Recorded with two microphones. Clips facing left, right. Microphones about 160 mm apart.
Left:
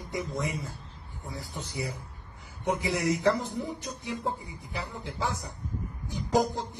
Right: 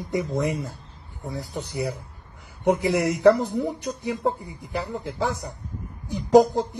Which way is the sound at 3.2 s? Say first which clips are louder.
Right 9 dB; 70° right (ahead or behind).